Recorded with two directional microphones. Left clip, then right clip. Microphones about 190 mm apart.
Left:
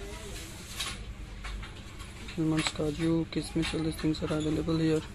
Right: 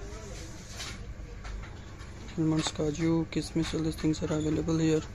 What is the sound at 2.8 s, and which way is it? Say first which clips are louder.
Speech: right 1 dB; 20° right (ahead or behind).